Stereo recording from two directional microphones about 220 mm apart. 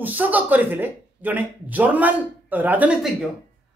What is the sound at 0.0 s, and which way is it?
A man's voice, 10° right (ahead or behind).